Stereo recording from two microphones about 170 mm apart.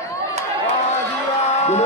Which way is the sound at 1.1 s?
40° left (ahead or behind).